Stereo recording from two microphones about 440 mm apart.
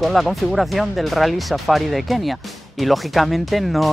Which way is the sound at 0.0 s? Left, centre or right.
Centre.